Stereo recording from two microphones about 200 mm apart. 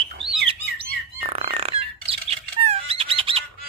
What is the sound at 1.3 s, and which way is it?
Bird, 30° right (ahead or behind).